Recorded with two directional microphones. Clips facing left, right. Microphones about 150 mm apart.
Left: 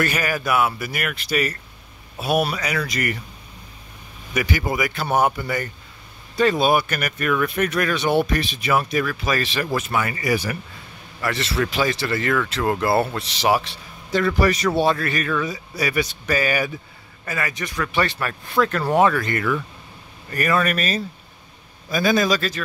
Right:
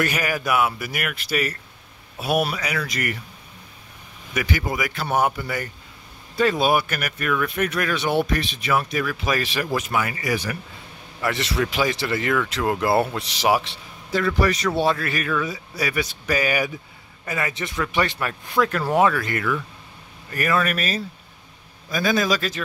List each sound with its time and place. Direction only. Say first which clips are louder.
0.0 s speech: left 1 dB; 15° right (ahead or behind)
4.3 s speech: left 2 dB; 5° left (ahead or behind)
9.1 s speech: left 1 dB; 15° right (ahead or behind)
10.3 s a man's voice: left 3 dB; 10° left (ahead or behind)
11.1 s speech: even; 15° right (ahead or behind)
14.1 s speech: left 2 dB; centre (ahead or behind)
16.3 s a man's voice: left 1 dB; 15° right (ahead or behind)